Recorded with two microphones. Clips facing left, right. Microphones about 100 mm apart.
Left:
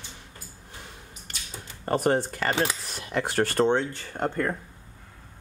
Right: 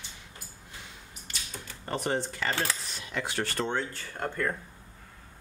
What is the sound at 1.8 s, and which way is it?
Speech, 50° left (ahead or behind).